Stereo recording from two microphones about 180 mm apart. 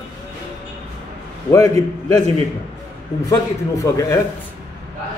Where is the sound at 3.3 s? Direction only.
20° left (ahead or behind).